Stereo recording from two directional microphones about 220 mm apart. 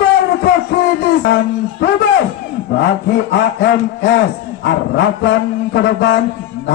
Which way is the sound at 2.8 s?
50° left (ahead or behind).